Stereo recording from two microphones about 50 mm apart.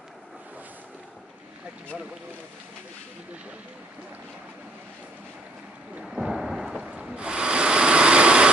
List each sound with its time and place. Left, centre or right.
6.0 s thunder: centre
6.8 s rub: right
7.2 s wood: centre